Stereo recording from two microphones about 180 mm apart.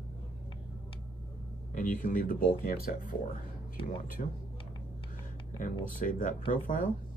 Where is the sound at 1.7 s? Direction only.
45° left (ahead or behind).